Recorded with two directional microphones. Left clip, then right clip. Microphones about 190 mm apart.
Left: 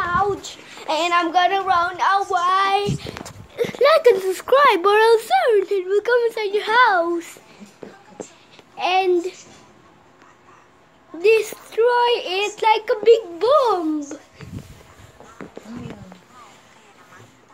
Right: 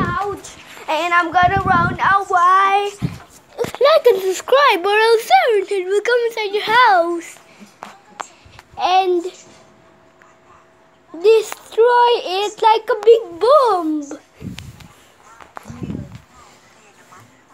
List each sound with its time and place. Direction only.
0.1 s speech: 5° right (ahead or behind)
3.7 s speech: 5° left (ahead or behind)
6.1 s speech: 20° left (ahead or behind)
6.8 s speech: centre (ahead or behind)
8.7 s a child's voice: 15° right (ahead or behind)
11.1 s a child's voice: 10° right (ahead or behind)